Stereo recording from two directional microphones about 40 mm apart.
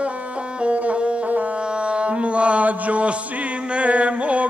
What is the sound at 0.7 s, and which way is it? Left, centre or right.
Music, right.